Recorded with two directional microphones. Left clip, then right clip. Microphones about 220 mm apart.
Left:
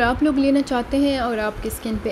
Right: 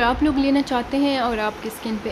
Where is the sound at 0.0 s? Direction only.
10° left (ahead or behind).